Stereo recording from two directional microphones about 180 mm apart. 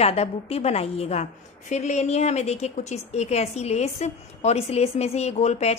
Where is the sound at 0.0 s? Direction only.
35° left (ahead or behind).